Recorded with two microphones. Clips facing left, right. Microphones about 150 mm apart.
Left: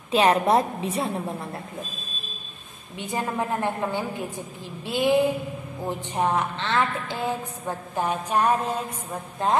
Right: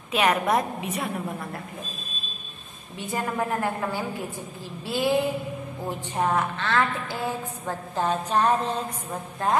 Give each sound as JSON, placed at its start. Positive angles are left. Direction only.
{"t": 0.1, "sound": "a woman's voice", "side_deg": 30}
{"t": 3.0, "sound": "a woman's voice", "side_deg": 20}
{"t": 9.4, "sound": "a woman's voice", "side_deg": 20}